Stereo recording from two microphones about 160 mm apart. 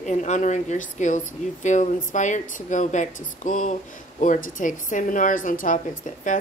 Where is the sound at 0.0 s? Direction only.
45° left (ahead or behind).